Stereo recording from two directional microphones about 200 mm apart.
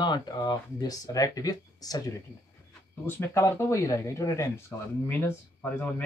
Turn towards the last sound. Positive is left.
turn(degrees=10)  # may be behind; listen again after turning